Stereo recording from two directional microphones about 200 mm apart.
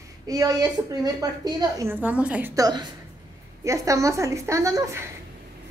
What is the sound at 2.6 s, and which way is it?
A woman's voice, 20° right (ahead or behind).